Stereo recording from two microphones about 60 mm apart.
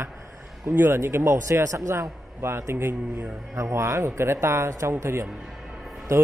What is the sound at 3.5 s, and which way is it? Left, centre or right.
A man's voice, right.